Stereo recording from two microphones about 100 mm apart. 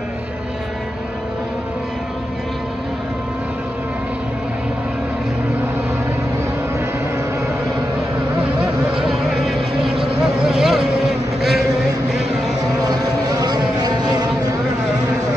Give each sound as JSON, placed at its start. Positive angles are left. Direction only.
{"t": 8.5, "sound": "vehicle", "side_deg": -5}
{"t": 12.8, "sound": "vehicle", "side_deg": -40}